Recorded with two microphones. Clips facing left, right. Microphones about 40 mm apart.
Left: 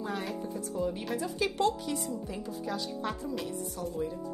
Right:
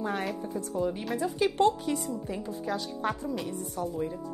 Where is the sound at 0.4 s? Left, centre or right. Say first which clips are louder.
Right 2 dB; right.